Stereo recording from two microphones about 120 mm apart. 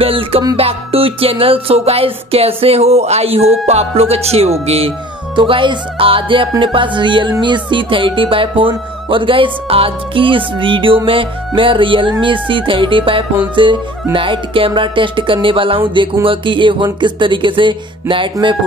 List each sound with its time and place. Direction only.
0.0 s music: 50° right (ahead or behind)